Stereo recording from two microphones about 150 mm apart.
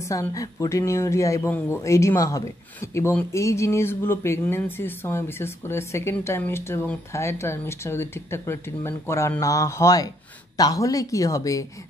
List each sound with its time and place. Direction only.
0.0 s speech: 20° left (ahead or behind)